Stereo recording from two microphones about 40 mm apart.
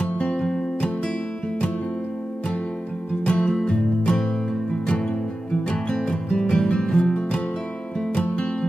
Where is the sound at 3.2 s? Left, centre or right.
Left.